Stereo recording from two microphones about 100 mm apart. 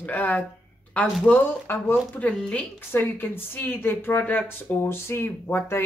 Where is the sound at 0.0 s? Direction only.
15° left (ahead or behind).